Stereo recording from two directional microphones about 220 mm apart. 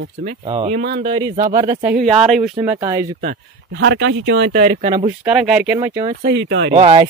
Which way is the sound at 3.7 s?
55° right (ahead or behind).